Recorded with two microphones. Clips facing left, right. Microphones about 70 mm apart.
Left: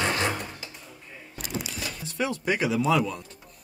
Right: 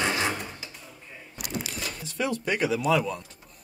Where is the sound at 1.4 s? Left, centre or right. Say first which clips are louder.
Even; right.